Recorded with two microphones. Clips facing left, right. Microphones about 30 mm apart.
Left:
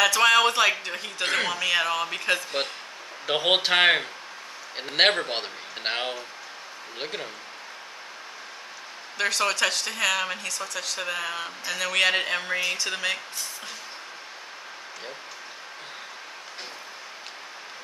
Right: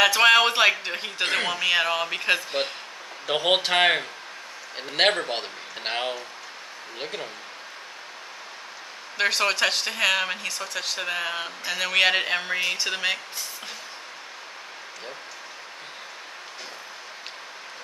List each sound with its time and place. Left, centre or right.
0.0 s speech: right
1.2 s speech: centre
3.3 s a man's voice: centre
9.2 s speech: centre